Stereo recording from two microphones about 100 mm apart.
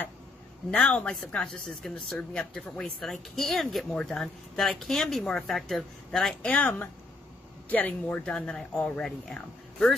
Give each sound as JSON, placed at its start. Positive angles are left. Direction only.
{"t": 0.7, "sound": "speech", "side_deg": 10}
{"t": 6.5, "sound": "speech", "side_deg": 15}